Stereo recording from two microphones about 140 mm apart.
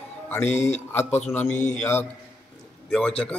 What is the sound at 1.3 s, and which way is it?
A man's voice, 15° left (ahead or behind).